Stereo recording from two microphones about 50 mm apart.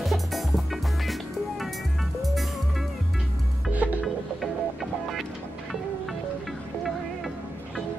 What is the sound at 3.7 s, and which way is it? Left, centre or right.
Music, right.